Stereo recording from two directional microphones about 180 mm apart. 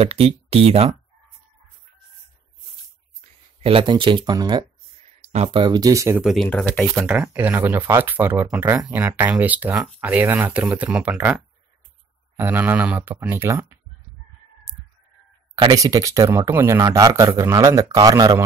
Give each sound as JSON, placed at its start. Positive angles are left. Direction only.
{"t": 0.0, "sound": "speech", "side_deg": -35}
{"t": 3.6, "sound": "speech", "side_deg": -30}
{"t": 6.2, "sound": "speech", "side_deg": 0}
{"t": 7.0, "sound": "speech", "side_deg": -10}
{"t": 15.5, "sound": "speech", "side_deg": -20}